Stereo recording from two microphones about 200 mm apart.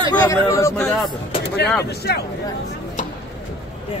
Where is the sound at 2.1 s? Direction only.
55° left (ahead or behind).